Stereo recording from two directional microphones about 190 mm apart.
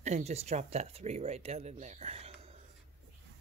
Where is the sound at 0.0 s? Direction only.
35° right (ahead or behind).